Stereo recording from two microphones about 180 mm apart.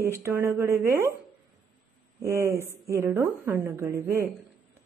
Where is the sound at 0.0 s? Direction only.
15° right (ahead or behind).